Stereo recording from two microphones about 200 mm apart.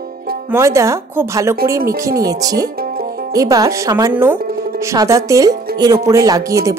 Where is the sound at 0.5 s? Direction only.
15° right (ahead or behind).